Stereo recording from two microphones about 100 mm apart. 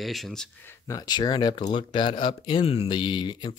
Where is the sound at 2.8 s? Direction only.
50° left (ahead or behind).